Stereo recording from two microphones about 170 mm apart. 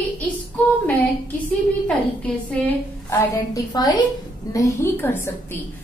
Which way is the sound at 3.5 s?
25° left (ahead or behind).